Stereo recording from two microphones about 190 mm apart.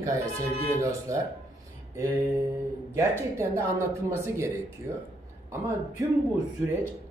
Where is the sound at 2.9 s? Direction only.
15° right (ahead or behind).